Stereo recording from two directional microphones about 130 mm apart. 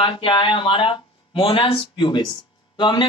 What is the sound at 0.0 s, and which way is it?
A man's voice, 40° left (ahead or behind).